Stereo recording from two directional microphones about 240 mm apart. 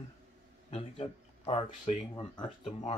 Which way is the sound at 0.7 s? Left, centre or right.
Left.